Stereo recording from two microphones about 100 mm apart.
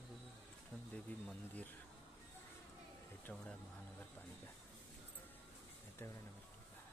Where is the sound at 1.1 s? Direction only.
15° left (ahead or behind).